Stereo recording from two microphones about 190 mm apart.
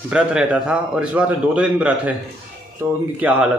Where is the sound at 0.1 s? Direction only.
5° right (ahead or behind).